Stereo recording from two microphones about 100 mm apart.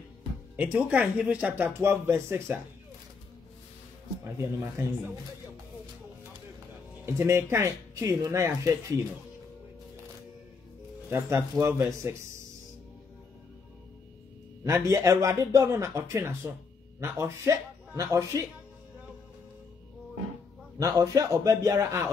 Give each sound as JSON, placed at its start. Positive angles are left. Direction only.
{"t": 0.6, "sound": "speech", "side_deg": -15}
{"t": 4.2, "sound": "speech", "side_deg": -25}
{"t": 7.1, "sound": "speech", "side_deg": -25}
{"t": 11.1, "sound": "speech", "side_deg": -25}
{"t": 14.7, "sound": "speech", "side_deg": -30}
{"t": 20.8, "sound": "a man's voice", "side_deg": -35}